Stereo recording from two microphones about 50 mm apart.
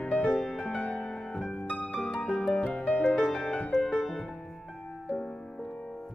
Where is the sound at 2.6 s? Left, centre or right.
Left.